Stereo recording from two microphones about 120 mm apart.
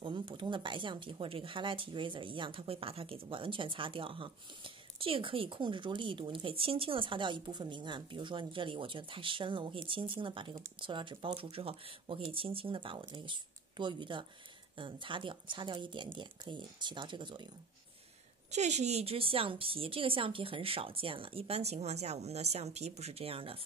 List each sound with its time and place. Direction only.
0.0 s speech: 45° right (ahead or behind)
18.5 s speech: 70° right (ahead or behind); by 23.6 s 50° right (ahead or behind)